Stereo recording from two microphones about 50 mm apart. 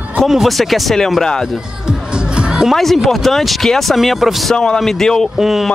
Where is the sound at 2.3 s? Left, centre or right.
Centre.